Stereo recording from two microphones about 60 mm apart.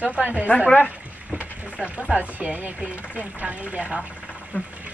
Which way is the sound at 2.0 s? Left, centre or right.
Right.